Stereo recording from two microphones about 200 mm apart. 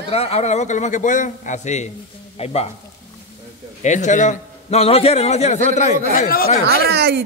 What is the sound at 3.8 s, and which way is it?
A man's voice, 35° left (ahead or behind).